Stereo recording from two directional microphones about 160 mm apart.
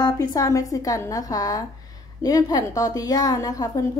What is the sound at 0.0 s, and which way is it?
A woman's voice, 25° left (ahead or behind).